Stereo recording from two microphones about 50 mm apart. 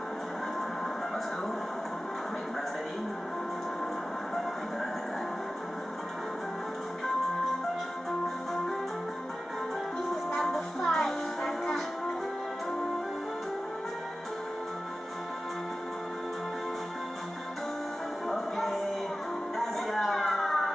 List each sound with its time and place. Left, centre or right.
10.3 s music: centre
18.3 s music: centre
19.6 s a sound: centre